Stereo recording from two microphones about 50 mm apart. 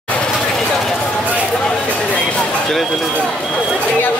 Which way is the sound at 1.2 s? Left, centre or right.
Left.